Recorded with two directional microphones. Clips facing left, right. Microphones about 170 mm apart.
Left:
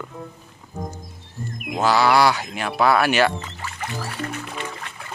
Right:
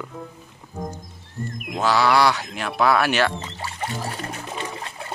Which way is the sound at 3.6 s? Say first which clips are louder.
Right 3 dB; 30° right (ahead or behind).